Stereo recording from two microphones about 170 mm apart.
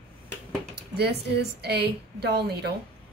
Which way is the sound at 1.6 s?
75° right (ahead or behind).